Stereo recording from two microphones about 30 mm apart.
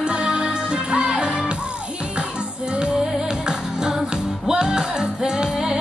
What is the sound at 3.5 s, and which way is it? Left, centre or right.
Music, right.